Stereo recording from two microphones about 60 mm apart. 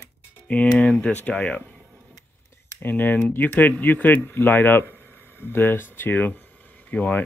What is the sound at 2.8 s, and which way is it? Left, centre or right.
Speech, left.